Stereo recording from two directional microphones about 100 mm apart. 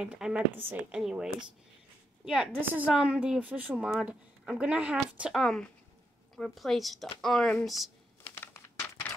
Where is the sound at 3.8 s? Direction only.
5° right (ahead or behind).